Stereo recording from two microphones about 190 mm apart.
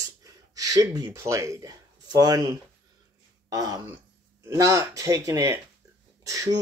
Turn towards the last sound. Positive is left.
turn(degrees=-20)  # may be behind; listen again after turning